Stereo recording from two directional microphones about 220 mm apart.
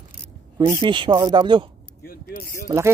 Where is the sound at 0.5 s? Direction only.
20° right (ahead or behind).